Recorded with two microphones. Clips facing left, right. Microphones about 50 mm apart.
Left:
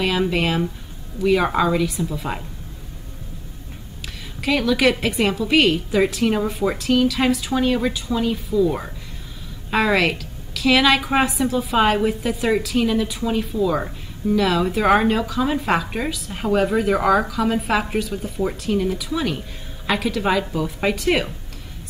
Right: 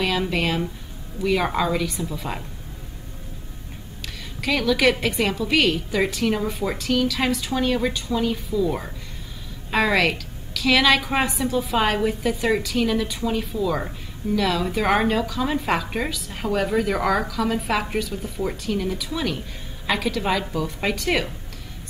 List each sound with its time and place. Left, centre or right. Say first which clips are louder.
0.0 s a woman's voice: left 3 dB; centre
4.4 s a woman's voice: left 2 dB; centre